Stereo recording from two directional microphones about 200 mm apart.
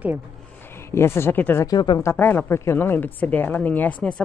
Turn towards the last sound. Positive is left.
turn(degrees=5)  # may be behind; listen again after turning